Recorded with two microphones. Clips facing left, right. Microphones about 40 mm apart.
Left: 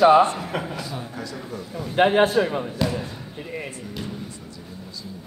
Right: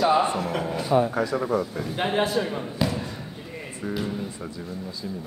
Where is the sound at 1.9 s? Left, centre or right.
Left.